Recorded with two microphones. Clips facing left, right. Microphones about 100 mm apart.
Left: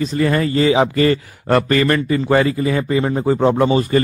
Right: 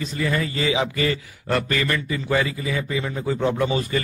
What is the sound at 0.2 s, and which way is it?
Speech, 50° left (ahead or behind).